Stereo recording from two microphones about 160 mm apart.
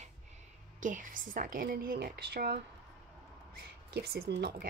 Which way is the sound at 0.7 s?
55° right (ahead or behind).